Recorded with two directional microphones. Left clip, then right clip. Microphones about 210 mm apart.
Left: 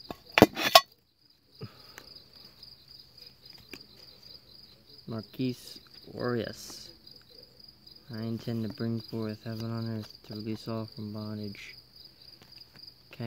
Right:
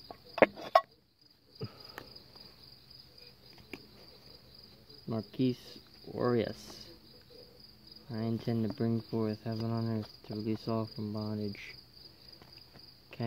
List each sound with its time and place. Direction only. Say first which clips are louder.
0.1 s chink: left 5 dB; 40° left (ahead or behind)
1.6 s cricket: right 2 dB; 5° right (ahead or behind)
5.0 s cricket: right 2 dB; centre (ahead or behind)
8.1 s cricket: right 1 dB; 5° left (ahead or behind)